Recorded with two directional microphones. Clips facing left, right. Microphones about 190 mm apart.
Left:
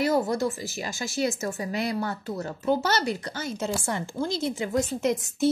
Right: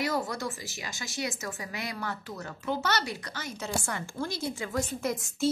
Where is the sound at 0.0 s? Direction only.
25° left (ahead or behind).